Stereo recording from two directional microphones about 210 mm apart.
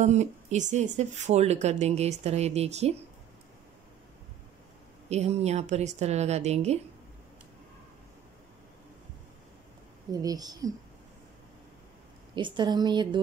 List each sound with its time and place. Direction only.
0.0 s speech: 35° right (ahead or behind)
5.1 s speech: 30° right (ahead or behind)
10.1 s a woman's voice: 15° right (ahead or behind)
12.4 s speech: 20° right (ahead or behind)